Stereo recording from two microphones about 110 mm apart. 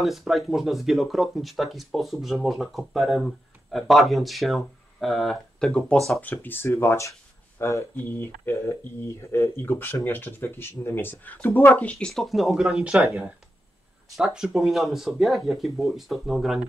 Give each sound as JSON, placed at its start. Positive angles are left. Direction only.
{"t": 0.0, "sound": "speech", "side_deg": 0}
{"t": 6.2, "sound": "speech", "side_deg": 20}